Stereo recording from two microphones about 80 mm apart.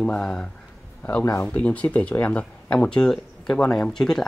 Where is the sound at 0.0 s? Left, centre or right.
Centre.